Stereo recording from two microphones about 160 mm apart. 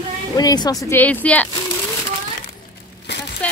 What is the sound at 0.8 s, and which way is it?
Speech, 10° left (ahead or behind).